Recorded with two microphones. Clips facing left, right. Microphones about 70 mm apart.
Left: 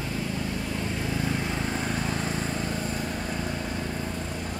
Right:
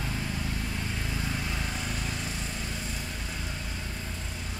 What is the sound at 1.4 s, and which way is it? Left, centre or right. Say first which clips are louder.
Vehicle: left 5 dB; left.